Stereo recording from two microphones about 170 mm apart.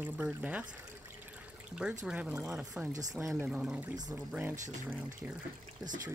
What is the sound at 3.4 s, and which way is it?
Speech, 5° right (ahead or behind).